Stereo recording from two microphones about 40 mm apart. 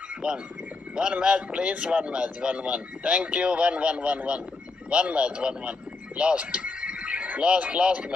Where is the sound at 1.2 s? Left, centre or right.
Right.